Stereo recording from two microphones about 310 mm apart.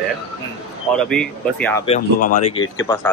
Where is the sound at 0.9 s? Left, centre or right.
Centre.